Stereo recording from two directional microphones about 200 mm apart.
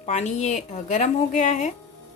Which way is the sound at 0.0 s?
35° left (ahead or behind).